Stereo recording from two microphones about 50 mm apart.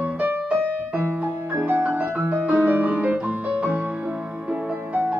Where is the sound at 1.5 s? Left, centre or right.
Right.